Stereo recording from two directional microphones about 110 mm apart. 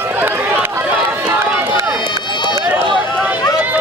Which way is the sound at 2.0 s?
45° left (ahead or behind).